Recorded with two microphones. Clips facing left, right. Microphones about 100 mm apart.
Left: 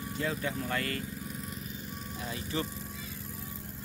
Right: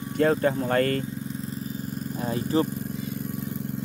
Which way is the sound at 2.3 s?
40° right (ahead or behind).